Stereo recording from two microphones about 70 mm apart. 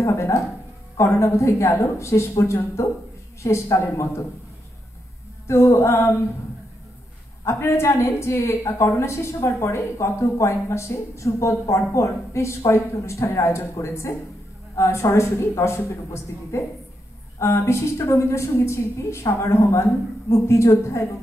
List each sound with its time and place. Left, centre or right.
0.0 s a woman's voice: left
5.5 s a woman's voice: left
7.4 s a woman's voice: left